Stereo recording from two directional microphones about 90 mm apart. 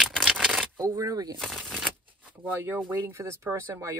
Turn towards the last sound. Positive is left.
turn(degrees=-30)  # may be behind; listen again after turning